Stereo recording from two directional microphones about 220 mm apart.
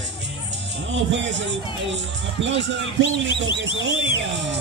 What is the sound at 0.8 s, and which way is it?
Speech, 55° right (ahead or behind).